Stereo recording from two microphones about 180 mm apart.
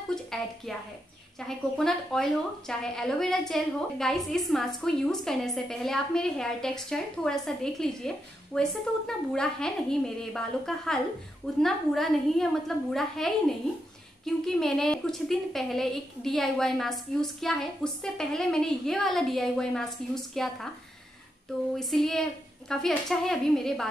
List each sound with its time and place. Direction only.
0.1 s a woman's voice: centre (ahead or behind)
1.8 s a woman's voice: centre (ahead or behind)
21.7 s a woman's voice: 5° left (ahead or behind)